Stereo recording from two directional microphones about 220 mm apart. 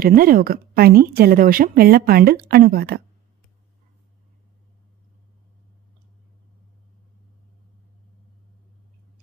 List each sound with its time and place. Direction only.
0.0 s a woman's voice: 40° right (ahead or behind)